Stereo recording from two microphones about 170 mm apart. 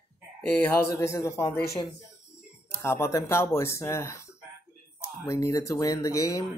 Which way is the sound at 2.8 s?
15° left (ahead or behind).